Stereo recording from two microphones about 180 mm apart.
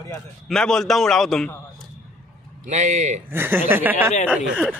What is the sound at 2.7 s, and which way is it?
Speech, 40° right (ahead or behind).